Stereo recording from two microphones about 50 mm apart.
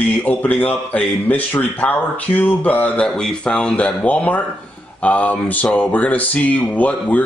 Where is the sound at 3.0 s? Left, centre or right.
Centre.